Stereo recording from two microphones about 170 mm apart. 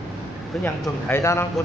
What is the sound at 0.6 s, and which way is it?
Speech, 15° left (ahead or behind).